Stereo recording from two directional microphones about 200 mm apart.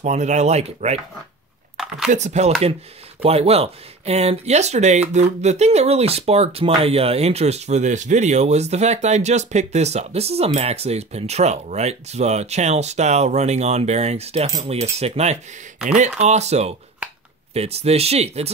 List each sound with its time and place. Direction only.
0.0 s speech: 35° right (ahead or behind)
2.0 s speech: 35° right (ahead or behind)